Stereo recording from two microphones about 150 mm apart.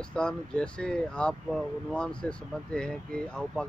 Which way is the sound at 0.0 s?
5° left (ahead or behind).